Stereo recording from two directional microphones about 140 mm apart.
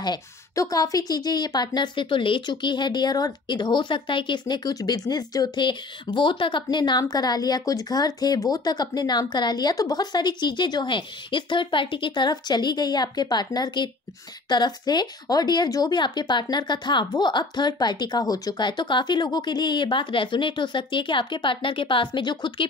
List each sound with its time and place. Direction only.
0.0 s speech: 30° left (ahead or behind)